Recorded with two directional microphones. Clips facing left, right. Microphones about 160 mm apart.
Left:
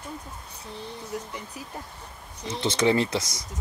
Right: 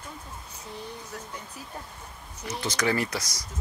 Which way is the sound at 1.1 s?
15° left (ahead or behind).